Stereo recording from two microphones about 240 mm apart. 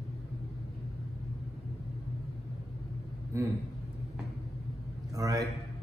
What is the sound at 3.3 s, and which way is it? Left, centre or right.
Speech, centre.